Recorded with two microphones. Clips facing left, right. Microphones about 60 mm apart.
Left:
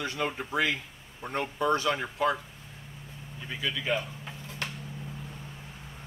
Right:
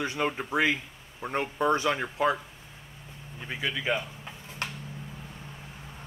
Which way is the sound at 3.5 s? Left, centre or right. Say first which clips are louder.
Right 1 dB; right.